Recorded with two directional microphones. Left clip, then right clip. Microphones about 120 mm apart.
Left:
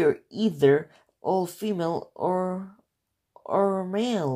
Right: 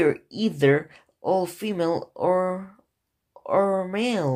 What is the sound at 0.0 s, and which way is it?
Speech, 30° left (ahead or behind).